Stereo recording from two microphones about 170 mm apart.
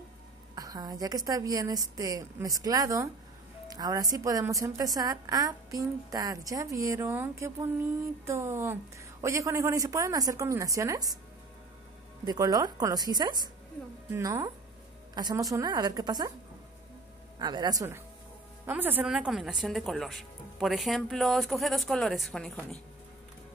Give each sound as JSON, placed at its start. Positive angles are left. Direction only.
{"t": 0.6, "sound": "a woman's voice", "side_deg": -20}
{"t": 12.3, "sound": "a woman's voice", "side_deg": -20}
{"t": 17.4, "sound": "a woman's voice", "side_deg": -25}